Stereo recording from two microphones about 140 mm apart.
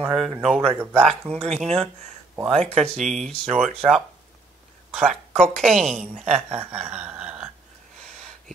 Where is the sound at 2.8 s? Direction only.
Centre (ahead or behind).